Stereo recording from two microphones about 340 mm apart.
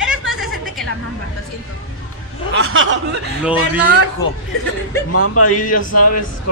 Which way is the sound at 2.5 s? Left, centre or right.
Right.